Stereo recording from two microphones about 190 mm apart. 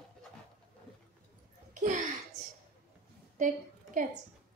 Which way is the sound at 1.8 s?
40° right (ahead or behind).